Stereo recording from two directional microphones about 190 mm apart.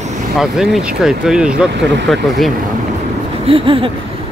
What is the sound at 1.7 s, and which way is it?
Speech, 65° right (ahead or behind).